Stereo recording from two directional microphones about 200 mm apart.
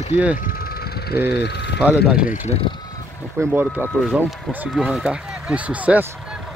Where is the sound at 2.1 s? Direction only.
5° right (ahead or behind).